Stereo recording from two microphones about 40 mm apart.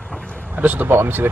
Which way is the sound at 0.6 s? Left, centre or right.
Right.